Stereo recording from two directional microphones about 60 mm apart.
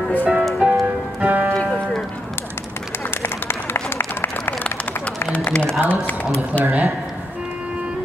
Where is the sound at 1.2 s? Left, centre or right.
Right.